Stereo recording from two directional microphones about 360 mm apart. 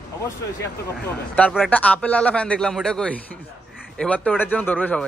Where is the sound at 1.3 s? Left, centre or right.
Centre.